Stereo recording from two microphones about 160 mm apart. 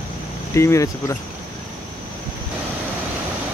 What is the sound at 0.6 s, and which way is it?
Speech, 20° left (ahead or behind).